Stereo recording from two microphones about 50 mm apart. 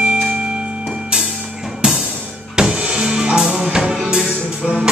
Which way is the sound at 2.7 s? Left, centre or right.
Right.